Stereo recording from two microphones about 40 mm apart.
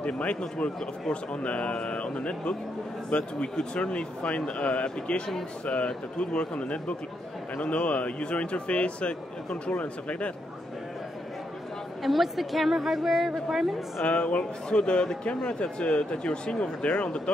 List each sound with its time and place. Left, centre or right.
0.0 s speech: left
0.7 s speech: centre
1.3 s a man's voice: left
12.0 s a woman's voice: centre
14.0 s a man's voice: left